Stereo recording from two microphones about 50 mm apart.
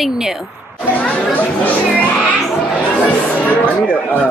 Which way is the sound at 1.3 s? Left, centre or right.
Left.